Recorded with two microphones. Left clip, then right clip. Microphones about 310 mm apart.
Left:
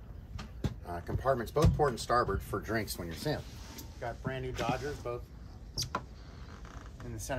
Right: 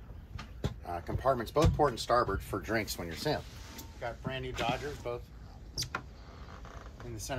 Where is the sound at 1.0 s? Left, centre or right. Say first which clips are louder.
Right 1 dB; right.